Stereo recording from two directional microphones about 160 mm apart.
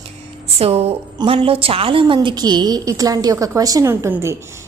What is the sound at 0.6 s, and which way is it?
A woman's voice, 40° right (ahead or behind).